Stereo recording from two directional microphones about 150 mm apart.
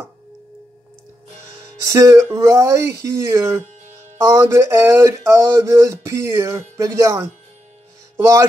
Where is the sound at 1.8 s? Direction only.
20° right (ahead or behind).